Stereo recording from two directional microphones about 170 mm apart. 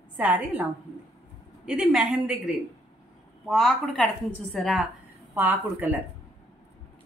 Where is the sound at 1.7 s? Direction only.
5° right (ahead or behind).